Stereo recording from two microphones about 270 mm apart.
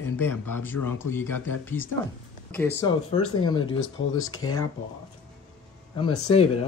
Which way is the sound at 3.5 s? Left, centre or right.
Left.